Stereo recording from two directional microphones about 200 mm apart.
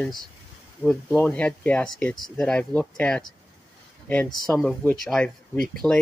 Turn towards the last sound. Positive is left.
turn(degrees=0)  # may be behind; listen again after turning